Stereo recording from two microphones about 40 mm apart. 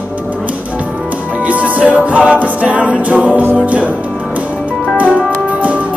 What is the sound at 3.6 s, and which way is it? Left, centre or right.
Music, right.